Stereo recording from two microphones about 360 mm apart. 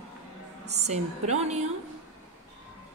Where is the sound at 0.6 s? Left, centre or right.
Centre.